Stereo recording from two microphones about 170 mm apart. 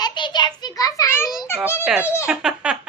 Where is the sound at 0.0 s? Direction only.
25° left (ahead or behind).